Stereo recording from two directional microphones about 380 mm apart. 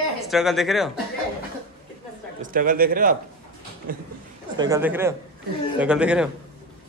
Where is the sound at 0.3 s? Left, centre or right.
Centre.